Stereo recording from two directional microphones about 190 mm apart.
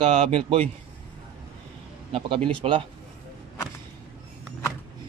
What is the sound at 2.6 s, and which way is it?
Speech, 30° right (ahead or behind).